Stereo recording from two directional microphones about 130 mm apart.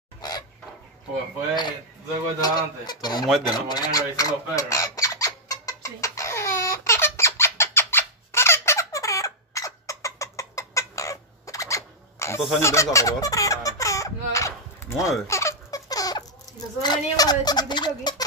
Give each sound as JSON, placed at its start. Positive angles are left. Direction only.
{"t": 0.2, "sound": "a sound", "side_deg": 30}
{"t": 1.5, "sound": "speech", "side_deg": 35}
{"t": 3.5, "sound": "squawk", "side_deg": 35}
{"t": 16.8, "sound": "speech", "side_deg": 30}